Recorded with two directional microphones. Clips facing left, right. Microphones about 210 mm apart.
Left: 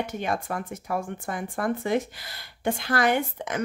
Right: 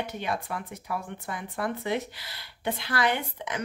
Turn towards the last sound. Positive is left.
turn(degrees=45)  # may be behind; listen again after turning